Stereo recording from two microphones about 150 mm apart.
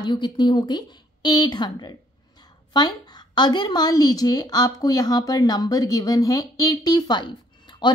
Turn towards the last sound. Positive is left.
turn(degrees=30)  # may be behind; listen again after turning